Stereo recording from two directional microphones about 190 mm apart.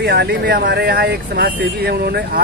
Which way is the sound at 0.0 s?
60° right (ahead or behind).